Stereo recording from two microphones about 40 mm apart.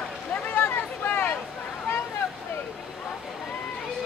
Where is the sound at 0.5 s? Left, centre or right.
Left.